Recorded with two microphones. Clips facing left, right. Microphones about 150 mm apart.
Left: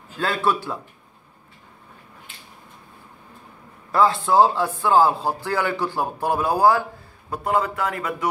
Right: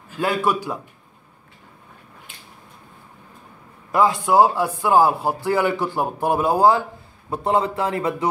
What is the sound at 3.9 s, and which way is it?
A man's voice, 15° right (ahead or behind).